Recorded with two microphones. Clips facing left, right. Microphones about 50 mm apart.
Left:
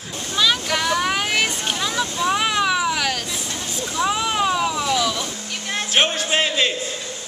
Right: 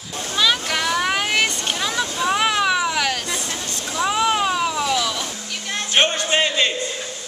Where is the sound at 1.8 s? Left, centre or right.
Centre.